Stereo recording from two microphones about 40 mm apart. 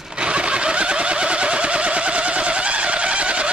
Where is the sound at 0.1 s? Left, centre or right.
Right.